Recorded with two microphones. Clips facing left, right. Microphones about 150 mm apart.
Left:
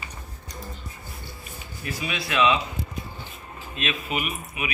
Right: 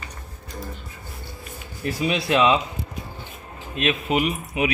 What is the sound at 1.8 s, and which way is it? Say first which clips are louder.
Speech: right 8 dB; 30° right (ahead or behind).